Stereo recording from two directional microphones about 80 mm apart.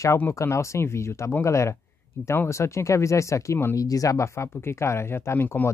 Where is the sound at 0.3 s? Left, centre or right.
Left.